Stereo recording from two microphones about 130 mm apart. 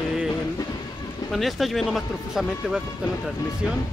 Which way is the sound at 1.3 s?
Centre (ahead or behind).